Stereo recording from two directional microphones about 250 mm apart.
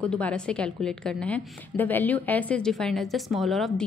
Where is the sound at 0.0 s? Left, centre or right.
Centre.